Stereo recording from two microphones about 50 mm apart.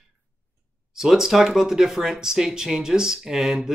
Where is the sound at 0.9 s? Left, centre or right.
Centre.